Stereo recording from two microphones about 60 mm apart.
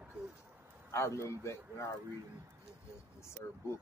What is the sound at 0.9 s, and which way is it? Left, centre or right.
Speech, left.